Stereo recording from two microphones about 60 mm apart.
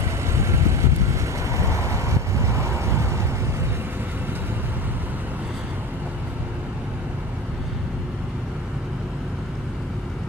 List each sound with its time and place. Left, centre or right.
0.3 s vehicle: right